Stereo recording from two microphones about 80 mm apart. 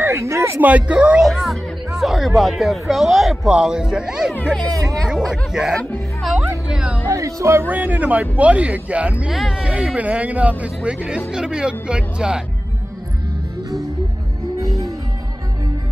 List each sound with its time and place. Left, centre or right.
0.0 s speech: right
0.6 s speech: centre
2.0 s speech: centre
6.7 s music: centre
7.1 s music: right
7.6 s speech: right